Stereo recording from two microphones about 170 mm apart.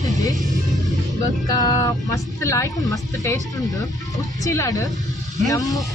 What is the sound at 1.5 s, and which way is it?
Speech, 20° left (ahead or behind).